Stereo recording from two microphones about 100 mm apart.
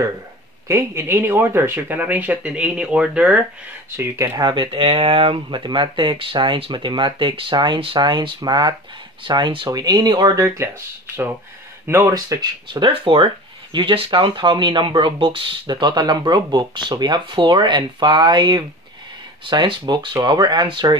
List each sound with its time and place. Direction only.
0.7 s speech: 25° right (ahead or behind); by 3.3 s 10° right (ahead or behind)
3.9 s speech: 25° right (ahead or behind)
4.4 s speech: 55° right (ahead or behind)
8.4 s speech: 45° right (ahead or behind)
9.2 s speech: 55° right (ahead or behind)
9.7 s speech: 40° right (ahead or behind)
12.1 s speech: 40° right (ahead or behind)